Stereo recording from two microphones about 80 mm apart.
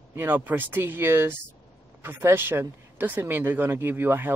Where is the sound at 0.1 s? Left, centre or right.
Right.